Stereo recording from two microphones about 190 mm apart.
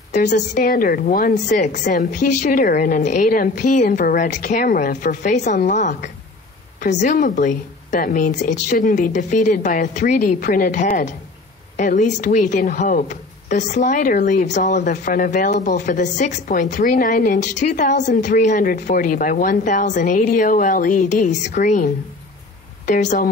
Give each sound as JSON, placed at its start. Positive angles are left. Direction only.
{"t": 0.1, "sound": "a woman's voice", "side_deg": 40}